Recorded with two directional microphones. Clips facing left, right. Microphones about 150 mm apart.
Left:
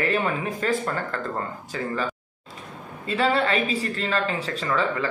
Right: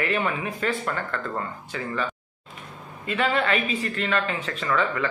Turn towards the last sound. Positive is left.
turn(degrees=35)  # may be behind; listen again after turning